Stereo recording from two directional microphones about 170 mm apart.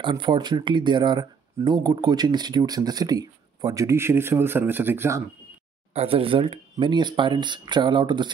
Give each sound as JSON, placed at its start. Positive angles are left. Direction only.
{"t": 0.0, "sound": "speech", "side_deg": -30}
{"t": 5.9, "sound": "speech", "side_deg": -35}